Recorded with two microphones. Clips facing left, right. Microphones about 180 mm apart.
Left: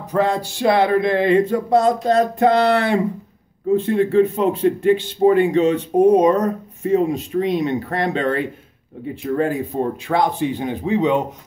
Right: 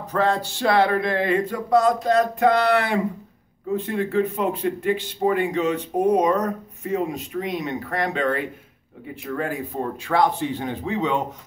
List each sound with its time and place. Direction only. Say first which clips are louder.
0.1 s speech: left 3 dB; 15° left (ahead or behind)